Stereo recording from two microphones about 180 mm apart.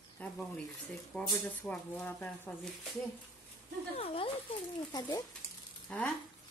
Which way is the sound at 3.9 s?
30° left (ahead or behind).